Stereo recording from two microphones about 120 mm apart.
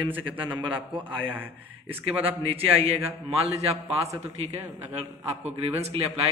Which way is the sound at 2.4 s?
50° right (ahead or behind).